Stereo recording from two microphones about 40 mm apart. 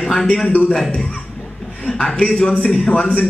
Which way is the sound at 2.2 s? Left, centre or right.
Centre.